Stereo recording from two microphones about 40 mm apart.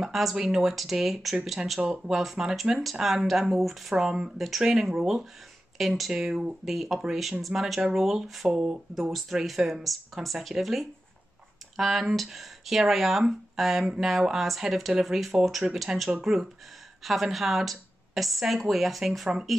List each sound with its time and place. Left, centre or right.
0.0 s a woman's voice: centre
3.9 s a woman's voice: centre
8.5 s speech: centre
9.1 s a woman's voice: centre